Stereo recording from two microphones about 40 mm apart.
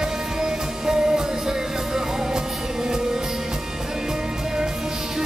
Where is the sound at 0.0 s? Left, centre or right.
Centre.